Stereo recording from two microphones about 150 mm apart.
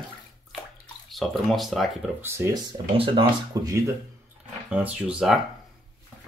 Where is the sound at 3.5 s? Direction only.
25° right (ahead or behind).